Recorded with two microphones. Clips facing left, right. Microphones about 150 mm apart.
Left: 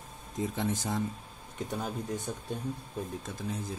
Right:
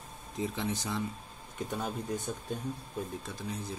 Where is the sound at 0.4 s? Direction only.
50° left (ahead or behind).